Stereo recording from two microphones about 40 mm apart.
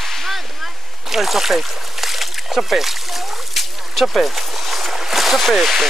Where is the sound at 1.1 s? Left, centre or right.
Centre.